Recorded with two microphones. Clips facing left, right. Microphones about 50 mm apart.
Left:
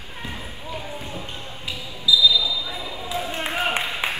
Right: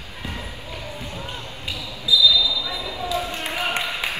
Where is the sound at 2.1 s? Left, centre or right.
Left.